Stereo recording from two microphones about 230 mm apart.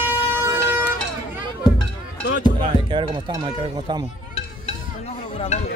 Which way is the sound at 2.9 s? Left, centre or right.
Right.